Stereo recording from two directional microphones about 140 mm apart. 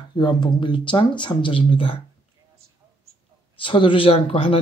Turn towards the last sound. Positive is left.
turn(degrees=40)  # may be behind; listen again after turning